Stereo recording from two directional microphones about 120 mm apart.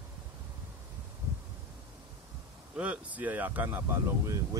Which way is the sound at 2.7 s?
10° right (ahead or behind).